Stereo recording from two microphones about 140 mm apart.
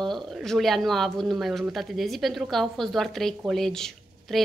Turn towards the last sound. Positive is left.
turn(degrees=5)  # may be behind; listen again after turning